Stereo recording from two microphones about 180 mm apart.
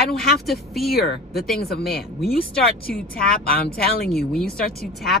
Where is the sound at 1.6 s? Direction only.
60° left (ahead or behind).